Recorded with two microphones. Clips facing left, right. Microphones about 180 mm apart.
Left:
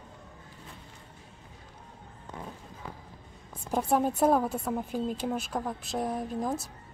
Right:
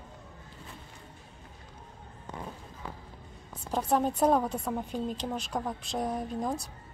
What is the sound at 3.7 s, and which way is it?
A woman's voice, 10° left (ahead or behind).